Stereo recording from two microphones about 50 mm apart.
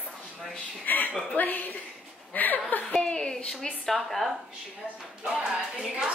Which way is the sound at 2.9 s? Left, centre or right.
Centre.